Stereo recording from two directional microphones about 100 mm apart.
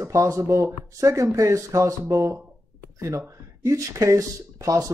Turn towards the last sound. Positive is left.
turn(degrees=-35)  # may be behind; listen again after turning